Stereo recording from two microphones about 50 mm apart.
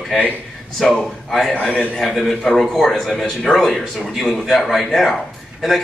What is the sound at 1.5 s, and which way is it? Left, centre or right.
Speech, left.